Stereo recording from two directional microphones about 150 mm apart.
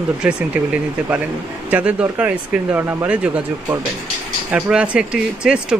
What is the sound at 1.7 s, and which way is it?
Speech, 10° right (ahead or behind).